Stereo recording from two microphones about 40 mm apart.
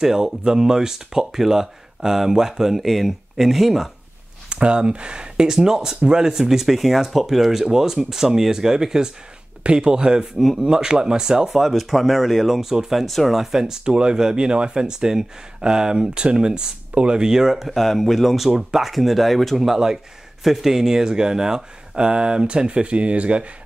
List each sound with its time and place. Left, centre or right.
0.0 s speech: centre
4.5 s speech: right
10.4 s speech: centre
10.7 s speech: centre
11.5 s speech: centre
13.0 s speech: centre
13.4 s speech: centre
17.6 s speech: centre
19.7 s speech: centre; by 23.5 s right